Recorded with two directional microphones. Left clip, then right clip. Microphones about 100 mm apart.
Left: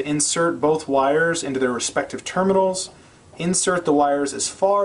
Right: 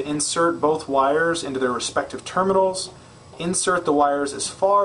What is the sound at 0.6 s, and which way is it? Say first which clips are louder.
Speech: left 1 dB; 5° right (ahead or behind).